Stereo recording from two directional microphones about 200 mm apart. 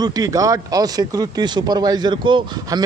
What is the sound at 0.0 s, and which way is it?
A man's voice, 20° right (ahead or behind).